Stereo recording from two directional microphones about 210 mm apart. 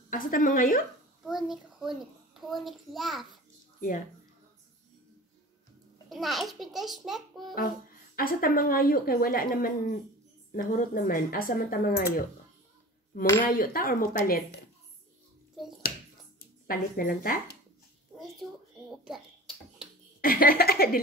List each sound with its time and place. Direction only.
0.1 s speech: 40° left (ahead or behind)
1.2 s a child's voice: centre (ahead or behind)
6.0 s a child's voice: centre (ahead or behind)
8.2 s speech: 45° left (ahead or behind)
13.6 s speech: 40° left (ahead or behind)
15.6 s finger snapping: centre (ahead or behind)
16.6 s speech: 45° left (ahead or behind)
18.2 s a sound: centre (ahead or behind)
20.2 s speech: 45° left (ahead or behind)